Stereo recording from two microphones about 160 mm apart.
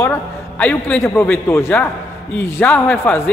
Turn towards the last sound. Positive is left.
turn(degrees=10)  # may be behind; listen again after turning